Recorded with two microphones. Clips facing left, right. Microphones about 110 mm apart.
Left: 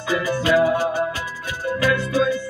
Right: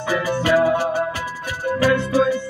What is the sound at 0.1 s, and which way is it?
Music, 35° right (ahead or behind).